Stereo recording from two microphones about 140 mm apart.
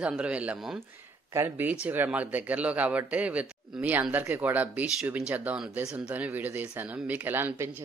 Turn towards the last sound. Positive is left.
turn(degrees=-15)  # may be behind; listen again after turning